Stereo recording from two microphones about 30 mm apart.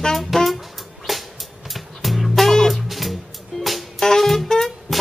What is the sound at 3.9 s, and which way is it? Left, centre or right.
Saxophone, centre.